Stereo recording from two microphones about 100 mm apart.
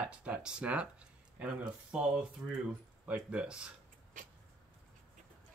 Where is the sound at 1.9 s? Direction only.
10° right (ahead or behind).